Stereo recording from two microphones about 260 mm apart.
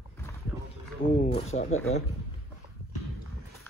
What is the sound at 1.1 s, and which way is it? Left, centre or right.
Speech, left.